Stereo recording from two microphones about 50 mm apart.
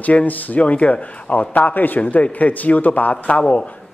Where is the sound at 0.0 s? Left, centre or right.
Left.